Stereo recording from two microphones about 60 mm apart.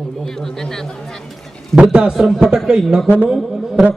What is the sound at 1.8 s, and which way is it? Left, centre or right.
Speech, centre.